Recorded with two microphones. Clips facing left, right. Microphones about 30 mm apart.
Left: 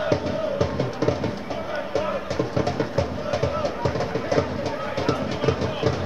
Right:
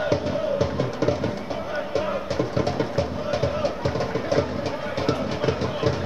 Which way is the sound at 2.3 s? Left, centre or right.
Centre.